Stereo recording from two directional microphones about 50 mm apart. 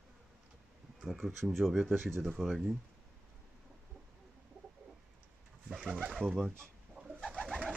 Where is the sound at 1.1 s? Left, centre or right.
Centre.